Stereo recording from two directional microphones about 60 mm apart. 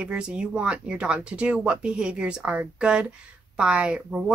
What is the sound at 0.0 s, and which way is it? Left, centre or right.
Speech, centre.